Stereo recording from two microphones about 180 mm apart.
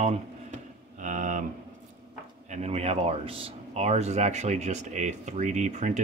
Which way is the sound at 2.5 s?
35° right (ahead or behind).